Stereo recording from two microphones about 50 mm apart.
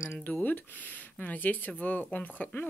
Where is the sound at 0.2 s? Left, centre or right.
Left.